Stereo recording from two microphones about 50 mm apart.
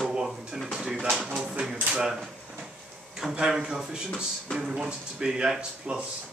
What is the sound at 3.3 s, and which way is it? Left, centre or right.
Speech, centre.